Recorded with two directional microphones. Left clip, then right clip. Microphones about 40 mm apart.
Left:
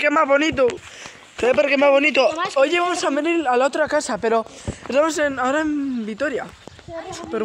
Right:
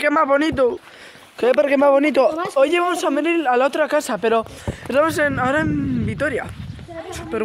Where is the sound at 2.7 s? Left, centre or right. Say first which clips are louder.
Right 1 dB; right.